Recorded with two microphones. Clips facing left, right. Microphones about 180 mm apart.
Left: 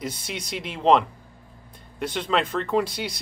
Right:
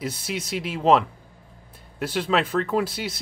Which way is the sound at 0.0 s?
5° right (ahead or behind).